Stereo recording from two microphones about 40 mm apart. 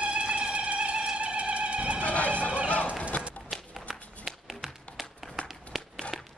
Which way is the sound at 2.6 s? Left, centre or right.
Left.